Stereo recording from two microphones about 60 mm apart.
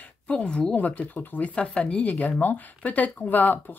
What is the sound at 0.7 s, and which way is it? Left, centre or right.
Speech, left.